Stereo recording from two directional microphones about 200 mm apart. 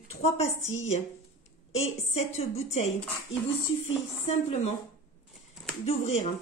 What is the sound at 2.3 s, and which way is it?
Speech, 35° left (ahead or behind).